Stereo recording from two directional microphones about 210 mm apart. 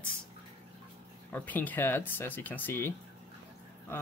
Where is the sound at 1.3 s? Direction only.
10° left (ahead or behind).